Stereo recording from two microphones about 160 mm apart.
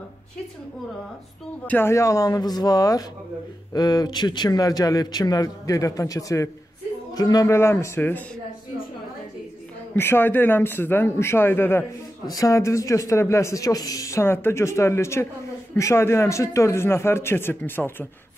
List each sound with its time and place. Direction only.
1.7 s a man's voice: 15° left (ahead or behind)
9.9 s a man's voice: 15° left (ahead or behind)